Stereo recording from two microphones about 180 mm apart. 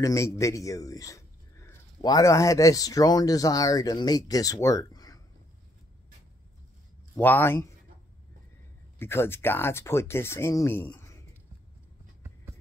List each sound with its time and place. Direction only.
0.0 s speech: 15° left (ahead or behind)
7.2 s speech: 10° left (ahead or behind)
8.9 s speech: 15° left (ahead or behind)